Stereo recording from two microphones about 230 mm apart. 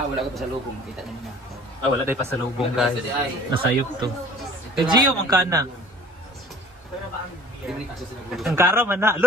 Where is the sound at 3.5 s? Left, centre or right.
Centre.